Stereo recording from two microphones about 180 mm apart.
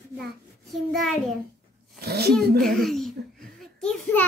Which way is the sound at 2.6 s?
Centre (ahead or behind).